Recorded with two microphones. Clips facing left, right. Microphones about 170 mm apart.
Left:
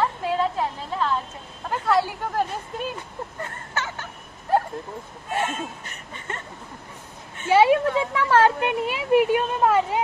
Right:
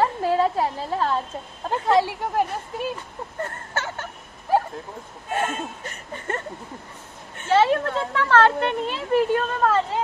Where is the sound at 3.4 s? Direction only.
45° right (ahead or behind).